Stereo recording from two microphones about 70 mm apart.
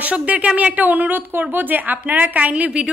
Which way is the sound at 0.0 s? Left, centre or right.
Right.